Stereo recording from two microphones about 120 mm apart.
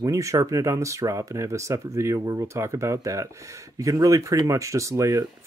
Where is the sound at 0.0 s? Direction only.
25° right (ahead or behind).